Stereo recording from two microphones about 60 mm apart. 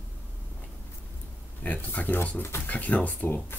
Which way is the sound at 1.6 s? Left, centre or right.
Left.